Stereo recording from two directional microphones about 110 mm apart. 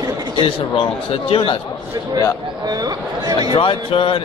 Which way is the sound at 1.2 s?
55° left (ahead or behind).